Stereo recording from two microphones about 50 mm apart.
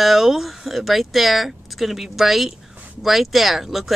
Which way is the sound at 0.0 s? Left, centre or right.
Centre.